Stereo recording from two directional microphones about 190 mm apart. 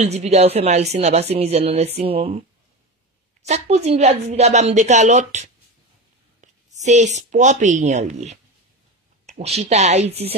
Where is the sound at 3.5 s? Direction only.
35° right (ahead or behind).